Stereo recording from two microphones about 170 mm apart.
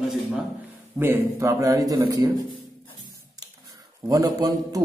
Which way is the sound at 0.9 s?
15° right (ahead or behind).